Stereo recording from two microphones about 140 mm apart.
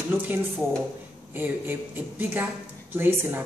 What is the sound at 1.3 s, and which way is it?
Speech, 15° right (ahead or behind).